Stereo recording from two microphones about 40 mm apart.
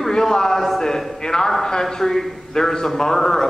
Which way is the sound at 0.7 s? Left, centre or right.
Centre.